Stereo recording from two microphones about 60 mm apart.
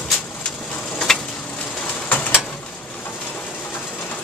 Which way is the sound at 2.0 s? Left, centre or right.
Left.